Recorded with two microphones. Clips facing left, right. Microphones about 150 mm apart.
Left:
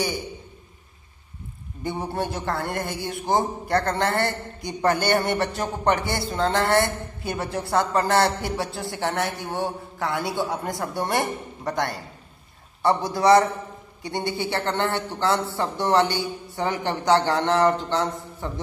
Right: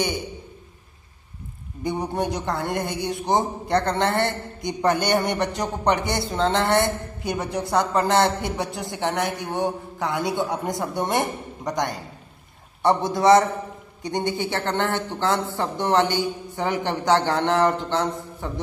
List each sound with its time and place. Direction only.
1.8 s a man's voice: 15° right (ahead or behind)